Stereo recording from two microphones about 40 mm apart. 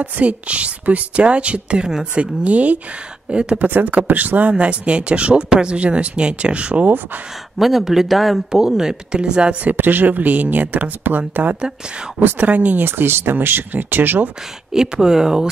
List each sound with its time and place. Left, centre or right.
0.0 s a woman's voice: right
3.3 s speech: right
3.5 s speech: right
4.5 s speech: right
7.5 s speech: centre
8.5 s speech: centre
9.6 s speech: right
12.8 s speech: right
14.7 s speech: centre